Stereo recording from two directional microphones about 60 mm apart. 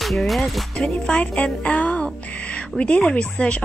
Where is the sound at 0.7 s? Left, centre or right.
Centre.